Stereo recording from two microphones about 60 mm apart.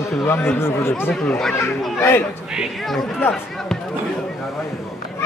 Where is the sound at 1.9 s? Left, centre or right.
Left.